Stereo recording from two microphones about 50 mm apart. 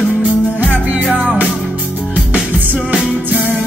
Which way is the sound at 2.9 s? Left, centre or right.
Right.